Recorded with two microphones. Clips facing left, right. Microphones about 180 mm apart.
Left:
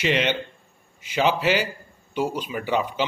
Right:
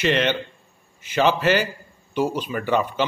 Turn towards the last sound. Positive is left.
turn(degrees=10)  # may be behind; listen again after turning